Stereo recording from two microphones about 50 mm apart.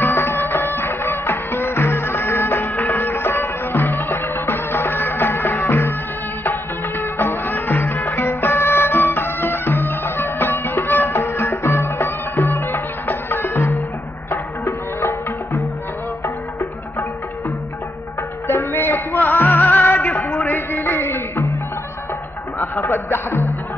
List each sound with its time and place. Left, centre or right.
0.0 s music: left
6.4 s music: left
18.5 s music: left
22.6 s music: left